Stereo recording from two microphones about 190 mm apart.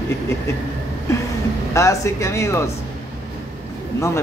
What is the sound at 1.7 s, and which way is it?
Speech, 15° left (ahead or behind).